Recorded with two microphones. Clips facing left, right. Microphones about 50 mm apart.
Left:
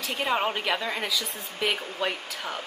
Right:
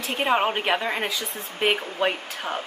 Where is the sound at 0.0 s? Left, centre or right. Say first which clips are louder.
Right 4 dB; right.